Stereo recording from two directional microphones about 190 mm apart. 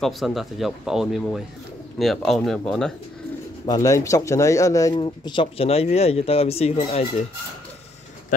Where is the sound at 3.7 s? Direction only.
15° left (ahead or behind); by 7.0 s 35° left (ahead or behind).